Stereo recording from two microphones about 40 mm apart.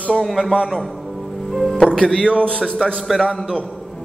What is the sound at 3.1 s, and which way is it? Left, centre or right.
Speech, centre.